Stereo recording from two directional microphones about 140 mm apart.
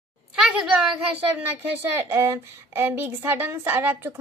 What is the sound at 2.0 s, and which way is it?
Speech, 20° right (ahead or behind).